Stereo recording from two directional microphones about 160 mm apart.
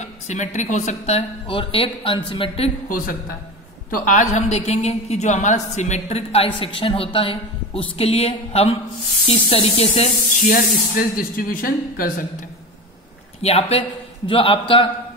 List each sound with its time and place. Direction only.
0.0 s a woman's voice: 45° left (ahead or behind)
3.9 s a woman's voice: 55° left (ahead or behind)
10.5 s speech: 65° left (ahead or behind)
13.4 s a man's voice: 40° left (ahead or behind)